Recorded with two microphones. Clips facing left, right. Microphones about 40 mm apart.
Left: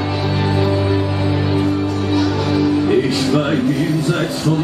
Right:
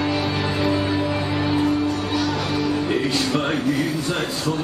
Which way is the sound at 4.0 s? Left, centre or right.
Left.